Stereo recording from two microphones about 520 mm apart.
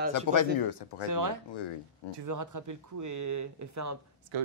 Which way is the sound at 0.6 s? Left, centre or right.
Left.